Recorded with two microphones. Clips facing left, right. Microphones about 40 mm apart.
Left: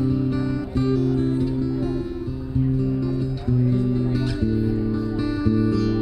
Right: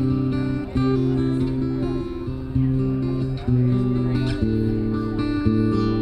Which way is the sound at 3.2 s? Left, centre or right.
Right.